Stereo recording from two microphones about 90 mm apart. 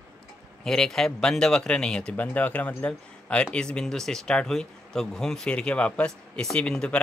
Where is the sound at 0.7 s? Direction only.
5° left (ahead or behind).